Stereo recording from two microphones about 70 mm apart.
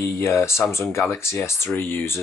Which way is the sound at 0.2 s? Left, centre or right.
Left.